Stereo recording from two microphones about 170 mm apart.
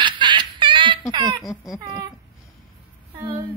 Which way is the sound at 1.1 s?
25° right (ahead or behind).